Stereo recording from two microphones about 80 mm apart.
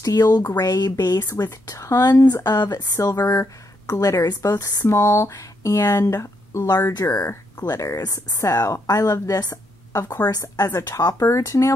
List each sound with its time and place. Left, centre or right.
0.0 s speech: left
4.8 s speech: left